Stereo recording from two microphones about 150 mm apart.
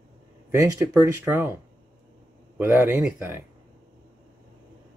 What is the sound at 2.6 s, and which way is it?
Speech, 15° right (ahead or behind).